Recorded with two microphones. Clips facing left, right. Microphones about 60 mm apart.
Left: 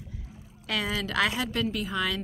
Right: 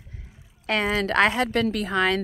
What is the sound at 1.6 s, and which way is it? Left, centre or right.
Speech, right.